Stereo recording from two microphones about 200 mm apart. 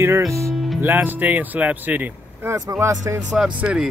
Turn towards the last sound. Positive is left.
turn(degrees=-5)  # may be behind; listen again after turning